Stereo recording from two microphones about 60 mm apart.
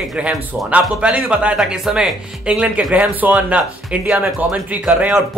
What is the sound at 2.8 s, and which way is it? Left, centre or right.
Speech, right.